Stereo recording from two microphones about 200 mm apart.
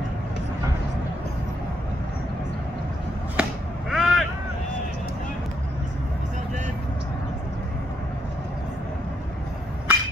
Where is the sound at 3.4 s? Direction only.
5° right (ahead or behind).